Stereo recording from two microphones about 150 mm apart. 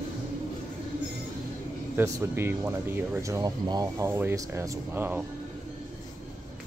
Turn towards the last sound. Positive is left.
turn(degrees=-10)  # may be behind; listen again after turning